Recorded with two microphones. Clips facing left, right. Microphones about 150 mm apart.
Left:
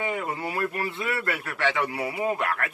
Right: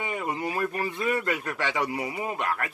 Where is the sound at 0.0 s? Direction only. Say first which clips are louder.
Left 1 dB; 15° right (ahead or behind).